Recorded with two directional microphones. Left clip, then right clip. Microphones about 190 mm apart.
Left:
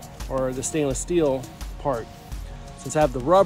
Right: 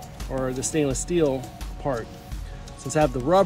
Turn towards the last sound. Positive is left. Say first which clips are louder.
# left 2 dB
turn(degrees=25)  # may be behind; listen again after turning